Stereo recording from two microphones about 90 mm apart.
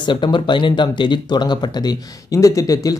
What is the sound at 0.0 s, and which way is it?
Speech, 60° left (ahead or behind).